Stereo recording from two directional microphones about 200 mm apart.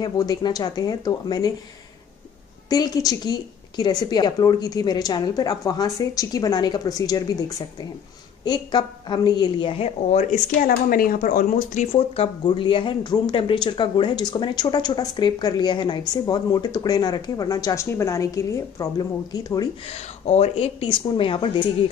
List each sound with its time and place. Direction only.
0.0 s speech: 20° left (ahead or behind)
2.7 s speech: 20° left (ahead or behind); by 10.4 s 35° left (ahead or behind)
10.7 s speech: 45° left (ahead or behind); by 19.7 s 20° left (ahead or behind)
19.9 s speech: 30° left (ahead or behind)